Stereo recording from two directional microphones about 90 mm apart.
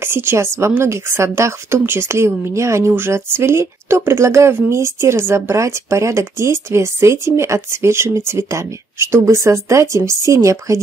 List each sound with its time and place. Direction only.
0.0 s speech: 25° right (ahead or behind)